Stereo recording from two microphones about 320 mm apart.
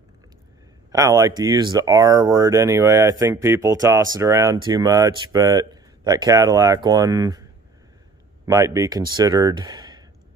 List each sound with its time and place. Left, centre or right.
0.9 s speech: centre
8.5 s speech: centre